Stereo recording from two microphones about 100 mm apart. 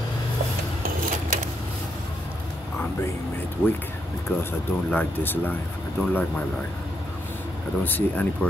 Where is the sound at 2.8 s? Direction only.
25° left (ahead or behind).